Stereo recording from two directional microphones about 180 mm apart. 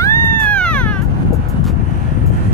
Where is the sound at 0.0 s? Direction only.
15° left (ahead or behind).